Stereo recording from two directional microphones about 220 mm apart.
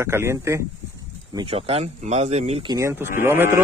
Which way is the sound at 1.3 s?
25° right (ahead or behind).